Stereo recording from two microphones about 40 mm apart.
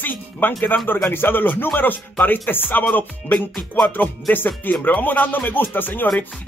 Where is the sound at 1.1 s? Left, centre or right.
Left.